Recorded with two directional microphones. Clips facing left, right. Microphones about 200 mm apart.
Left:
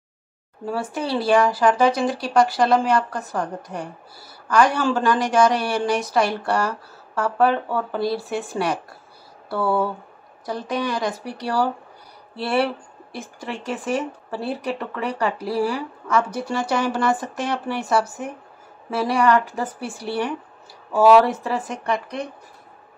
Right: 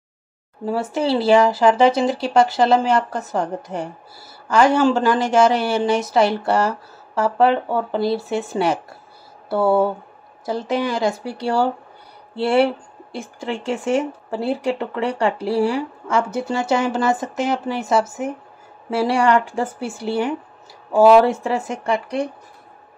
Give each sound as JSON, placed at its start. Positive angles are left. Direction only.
{"t": 0.7, "sound": "speech", "side_deg": -25}